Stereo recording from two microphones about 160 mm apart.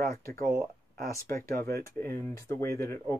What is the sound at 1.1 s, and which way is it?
Speech, 15° left (ahead or behind).